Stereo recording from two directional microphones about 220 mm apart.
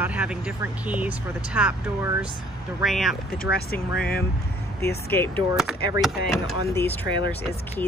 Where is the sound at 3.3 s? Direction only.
45° left (ahead or behind).